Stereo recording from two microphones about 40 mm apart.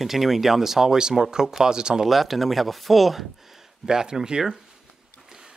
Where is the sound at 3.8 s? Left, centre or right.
Centre.